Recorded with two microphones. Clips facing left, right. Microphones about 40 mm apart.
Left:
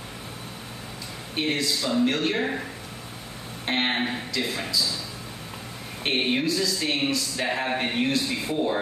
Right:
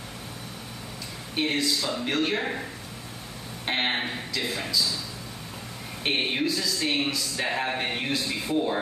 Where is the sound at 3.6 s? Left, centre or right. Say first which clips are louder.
Left 2 dB; centre.